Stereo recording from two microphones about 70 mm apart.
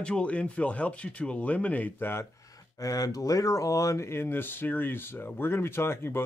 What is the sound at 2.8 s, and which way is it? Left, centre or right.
Speech, left.